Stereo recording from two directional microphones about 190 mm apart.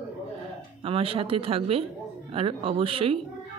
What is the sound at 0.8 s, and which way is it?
Speech, 30° right (ahead or behind).